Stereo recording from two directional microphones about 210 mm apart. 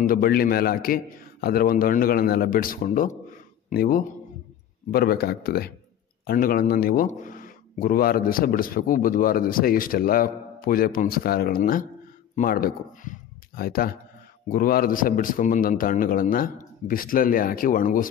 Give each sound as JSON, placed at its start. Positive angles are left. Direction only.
{"t": 0.0, "sound": "a man's voice", "side_deg": 45}